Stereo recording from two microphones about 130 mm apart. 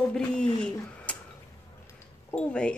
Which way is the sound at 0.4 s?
5° left (ahead or behind).